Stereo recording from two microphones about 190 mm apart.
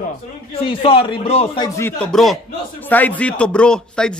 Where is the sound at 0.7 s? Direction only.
30° left (ahead or behind).